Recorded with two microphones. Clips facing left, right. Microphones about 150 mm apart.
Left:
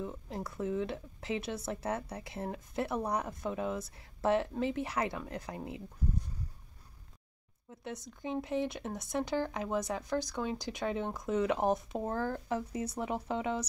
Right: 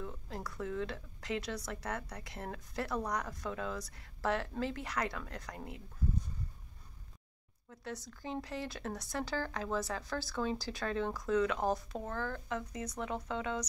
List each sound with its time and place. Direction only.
0.0 s a woman's voice: 25° left (ahead or behind)
7.7 s a woman's voice: 20° left (ahead or behind)
12.1 s a woman's voice: 35° left (ahead or behind)